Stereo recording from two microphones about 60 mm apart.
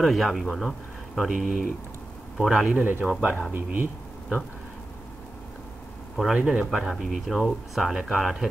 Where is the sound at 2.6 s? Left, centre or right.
Right.